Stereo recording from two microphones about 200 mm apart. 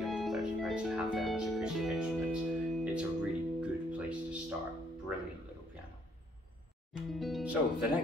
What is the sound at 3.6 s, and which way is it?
Music, 5° right (ahead or behind).